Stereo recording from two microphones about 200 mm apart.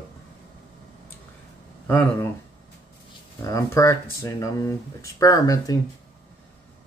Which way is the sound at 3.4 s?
15° left (ahead or behind).